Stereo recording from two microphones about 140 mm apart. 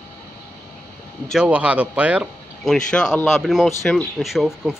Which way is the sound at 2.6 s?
5° left (ahead or behind).